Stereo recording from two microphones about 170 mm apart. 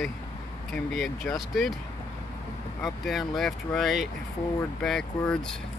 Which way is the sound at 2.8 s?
Centre (ahead or behind).